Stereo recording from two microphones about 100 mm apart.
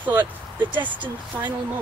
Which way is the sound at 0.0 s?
20° right (ahead or behind).